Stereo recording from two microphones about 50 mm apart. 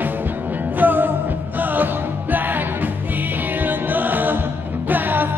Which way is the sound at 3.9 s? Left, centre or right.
Right.